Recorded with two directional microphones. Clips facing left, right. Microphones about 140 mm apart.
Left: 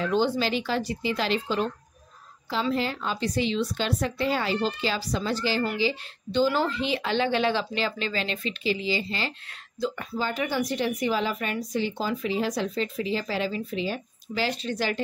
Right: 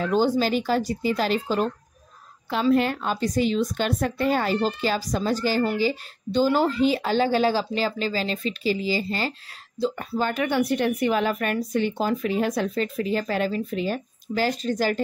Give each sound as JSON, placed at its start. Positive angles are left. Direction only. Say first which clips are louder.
{"t": 0.0, "sound": "a woman's voice", "louder": "right 3 dB", "side_deg": -45}
{"t": 2.7, "sound": "a woman's voice", "louder": "right 6 dB", "side_deg": -55}
{"t": 10.1, "sound": "a woman's voice", "louder": "right 5 dB", "side_deg": -55}